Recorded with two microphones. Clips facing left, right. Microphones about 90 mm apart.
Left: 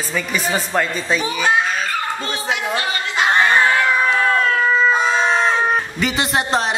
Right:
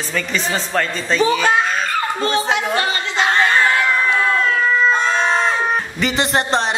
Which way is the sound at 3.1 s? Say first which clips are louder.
Left 1 dB; 15° left (ahead or behind).